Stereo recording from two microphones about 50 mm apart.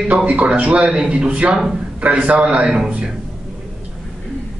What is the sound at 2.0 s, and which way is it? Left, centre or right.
Speech, right.